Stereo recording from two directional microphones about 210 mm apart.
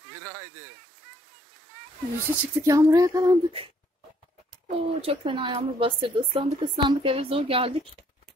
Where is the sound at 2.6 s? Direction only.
15° right (ahead or behind).